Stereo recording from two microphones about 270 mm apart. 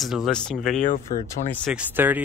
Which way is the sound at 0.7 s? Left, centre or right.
Left.